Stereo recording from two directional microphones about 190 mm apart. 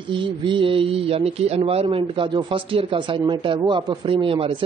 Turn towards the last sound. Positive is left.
turn(degrees=-25)  # may be behind; listen again after turning